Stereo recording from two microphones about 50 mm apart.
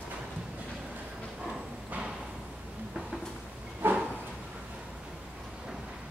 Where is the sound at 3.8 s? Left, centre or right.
Right.